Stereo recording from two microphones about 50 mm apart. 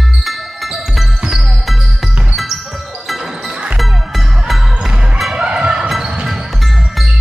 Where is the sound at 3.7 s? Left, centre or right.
Centre.